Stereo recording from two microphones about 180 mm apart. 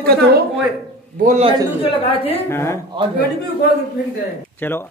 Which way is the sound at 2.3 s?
15° left (ahead or behind).